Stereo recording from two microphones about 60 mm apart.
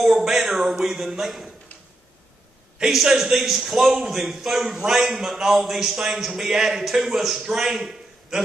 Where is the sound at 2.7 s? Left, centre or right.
Centre.